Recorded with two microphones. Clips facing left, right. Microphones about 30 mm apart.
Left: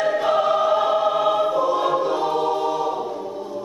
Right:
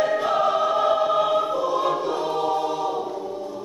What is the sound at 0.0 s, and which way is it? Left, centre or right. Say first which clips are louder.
Choir: left 1 dB; centre.